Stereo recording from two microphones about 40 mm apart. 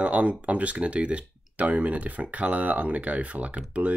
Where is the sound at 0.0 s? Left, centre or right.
Right.